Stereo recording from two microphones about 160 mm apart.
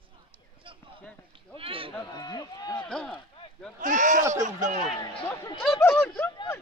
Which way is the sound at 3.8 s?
50° right (ahead or behind).